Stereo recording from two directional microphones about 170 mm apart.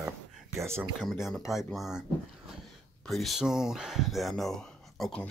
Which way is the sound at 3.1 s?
Centre (ahead or behind).